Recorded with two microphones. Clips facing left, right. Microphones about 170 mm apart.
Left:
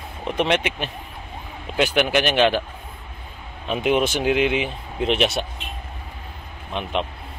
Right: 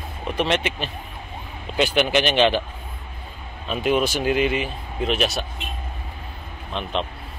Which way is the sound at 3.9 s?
20° left (ahead or behind).